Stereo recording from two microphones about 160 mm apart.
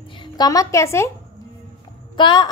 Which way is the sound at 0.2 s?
25° left (ahead or behind).